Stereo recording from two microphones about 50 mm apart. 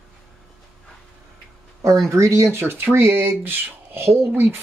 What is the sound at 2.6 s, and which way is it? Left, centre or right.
Speech, right.